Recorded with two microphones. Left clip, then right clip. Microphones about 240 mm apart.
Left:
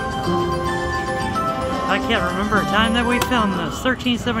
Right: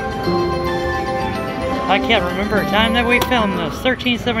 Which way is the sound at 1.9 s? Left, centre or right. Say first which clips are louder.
Right 5 dB; centre.